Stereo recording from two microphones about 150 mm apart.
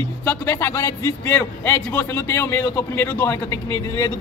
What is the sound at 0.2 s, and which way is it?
A man's voice, 15° left (ahead or behind).